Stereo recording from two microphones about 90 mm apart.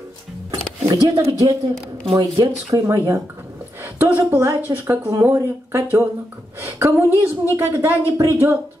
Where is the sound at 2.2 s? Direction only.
45° right (ahead or behind).